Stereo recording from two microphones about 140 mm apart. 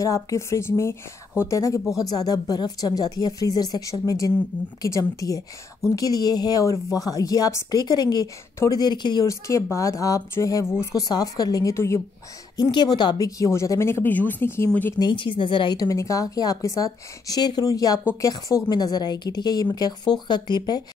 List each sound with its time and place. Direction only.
0.0 s a woman's voice: 25° left (ahead or behind)
15.0 s a woman's voice: 35° left (ahead or behind)